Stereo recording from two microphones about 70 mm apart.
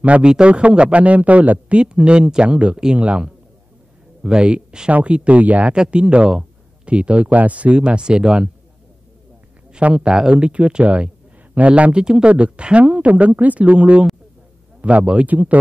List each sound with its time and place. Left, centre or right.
0.0 s speech: centre
9.7 s speech: centre